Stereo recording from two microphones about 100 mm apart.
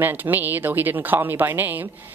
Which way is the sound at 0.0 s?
20° right (ahead or behind).